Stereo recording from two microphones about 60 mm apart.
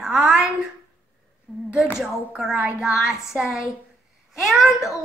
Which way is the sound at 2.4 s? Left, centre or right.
Centre.